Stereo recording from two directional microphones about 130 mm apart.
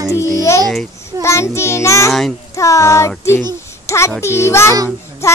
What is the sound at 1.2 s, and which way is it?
A child's voice, 20° left (ahead or behind).